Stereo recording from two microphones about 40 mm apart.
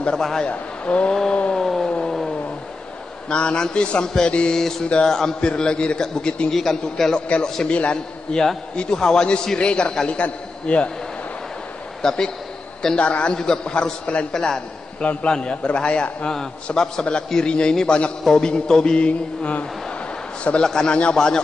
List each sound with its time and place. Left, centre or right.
0.1 s a man's voice: centre
0.5 s a man's voice: left
1.5 s a sound: centre
3.3 s a man's voice: left
4.6 s a man's voice: centre
5.4 s a man's voice: left
6.5 s a man's voice: centre
7.2 s a man's voice: left
12.0 s a man's voice: centre
12.9 s a man's voice: left
14.3 s a man's voice: centre
15.2 s a man's voice: left
16.7 s a man's voice: centre; by 19.6 s left
20.6 s a man's voice: centre